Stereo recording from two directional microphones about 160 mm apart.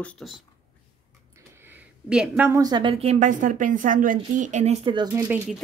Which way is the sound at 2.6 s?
30° right (ahead or behind).